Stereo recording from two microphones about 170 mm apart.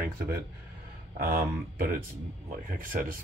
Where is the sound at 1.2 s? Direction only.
60° right (ahead or behind).